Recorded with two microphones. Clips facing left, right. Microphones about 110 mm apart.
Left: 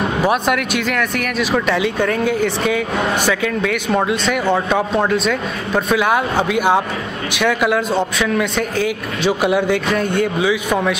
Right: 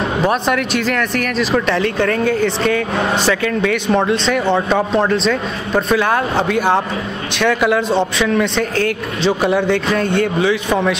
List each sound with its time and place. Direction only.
0.2 s speech: 5° left (ahead or behind)